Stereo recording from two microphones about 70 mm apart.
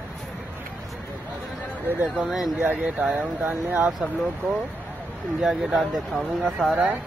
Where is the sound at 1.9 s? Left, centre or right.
Right.